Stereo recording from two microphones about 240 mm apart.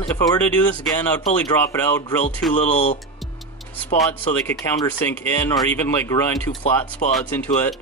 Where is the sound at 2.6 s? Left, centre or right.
Left.